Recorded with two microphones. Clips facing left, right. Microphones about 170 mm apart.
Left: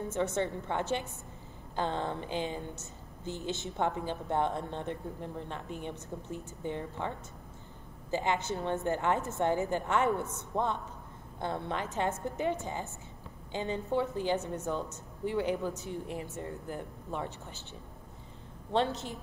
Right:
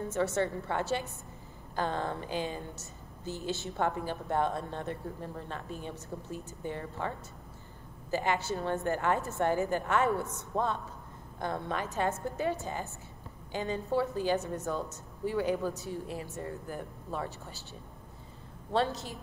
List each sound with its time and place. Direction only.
0.1 s a woman's voice: 20° left (ahead or behind)
8.1 s a woman's voice: 20° left (ahead or behind)
18.7 s a woman's voice: 20° left (ahead or behind)